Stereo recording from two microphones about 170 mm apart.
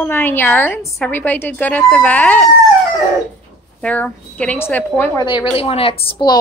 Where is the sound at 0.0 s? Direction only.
10° left (ahead or behind).